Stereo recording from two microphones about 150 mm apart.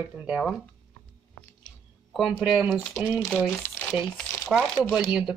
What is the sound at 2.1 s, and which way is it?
Speech, centre (ahead or behind).